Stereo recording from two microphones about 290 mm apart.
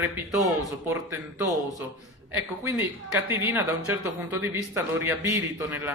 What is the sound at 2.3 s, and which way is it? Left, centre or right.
Speech, centre.